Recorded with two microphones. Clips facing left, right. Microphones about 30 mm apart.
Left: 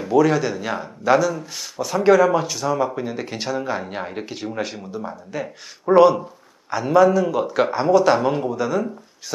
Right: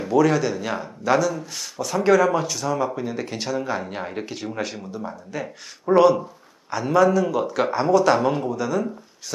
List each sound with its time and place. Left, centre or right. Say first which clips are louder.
0.0 s speech: left 1 dB; centre